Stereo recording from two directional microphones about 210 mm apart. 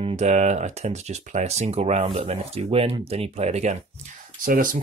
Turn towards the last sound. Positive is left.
turn(degrees=-40)  # may be behind; listen again after turning